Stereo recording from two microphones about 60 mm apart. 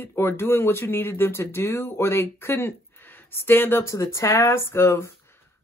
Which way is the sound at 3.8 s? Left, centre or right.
Left.